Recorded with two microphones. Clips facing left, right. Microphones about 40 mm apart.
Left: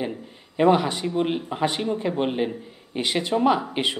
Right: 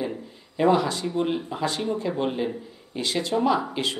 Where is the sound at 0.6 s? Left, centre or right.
Left.